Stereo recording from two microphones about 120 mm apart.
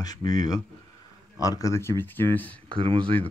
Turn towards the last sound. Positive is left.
turn(degrees=-45)  # may be behind; listen again after turning